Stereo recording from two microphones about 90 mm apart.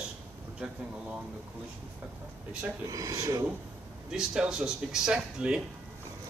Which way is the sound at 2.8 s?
40° right (ahead or behind).